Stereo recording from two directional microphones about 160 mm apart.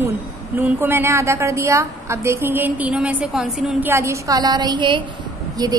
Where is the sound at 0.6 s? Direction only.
15° right (ahead or behind).